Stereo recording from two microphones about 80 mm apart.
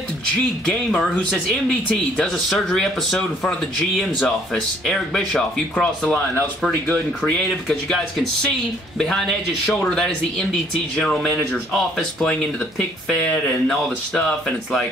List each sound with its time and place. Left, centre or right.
2.3 s speech: centre
4.8 s speech: centre